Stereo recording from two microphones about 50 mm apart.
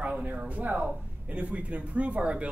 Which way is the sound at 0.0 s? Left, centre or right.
Right.